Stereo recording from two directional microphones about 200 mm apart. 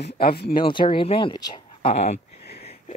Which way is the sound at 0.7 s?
25° left (ahead or behind).